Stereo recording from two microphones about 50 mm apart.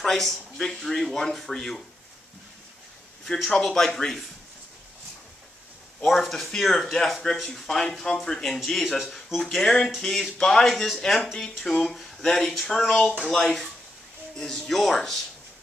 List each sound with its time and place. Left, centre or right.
0.0 s speech: centre
3.3 s speech: centre
6.0 s speech: centre